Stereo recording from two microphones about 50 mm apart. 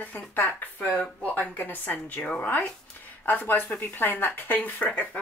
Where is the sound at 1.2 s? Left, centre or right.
Left.